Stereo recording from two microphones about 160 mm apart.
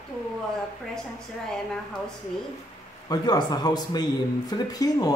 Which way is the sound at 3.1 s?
25° left (ahead or behind).